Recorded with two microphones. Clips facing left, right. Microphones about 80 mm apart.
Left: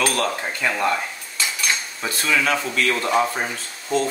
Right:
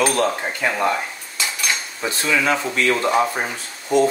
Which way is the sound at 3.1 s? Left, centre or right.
Centre.